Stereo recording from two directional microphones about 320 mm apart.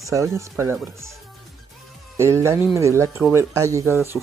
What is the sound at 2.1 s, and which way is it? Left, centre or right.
Speech, centre.